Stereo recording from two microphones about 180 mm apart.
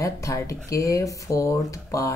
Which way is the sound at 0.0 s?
20° left (ahead or behind).